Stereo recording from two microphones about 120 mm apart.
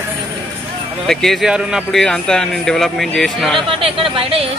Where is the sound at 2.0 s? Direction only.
5° left (ahead or behind).